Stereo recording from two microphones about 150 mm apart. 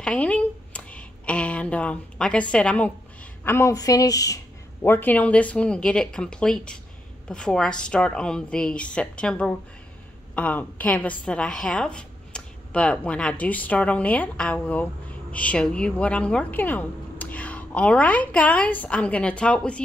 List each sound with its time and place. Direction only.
0.0 s speech: 5° left (ahead or behind)
3.4 s a woman's voice: 20° left (ahead or behind)